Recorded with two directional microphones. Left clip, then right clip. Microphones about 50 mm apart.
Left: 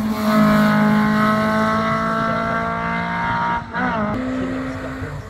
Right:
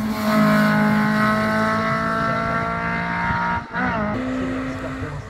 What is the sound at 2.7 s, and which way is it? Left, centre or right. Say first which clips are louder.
Vehicle: left 1 dB; right.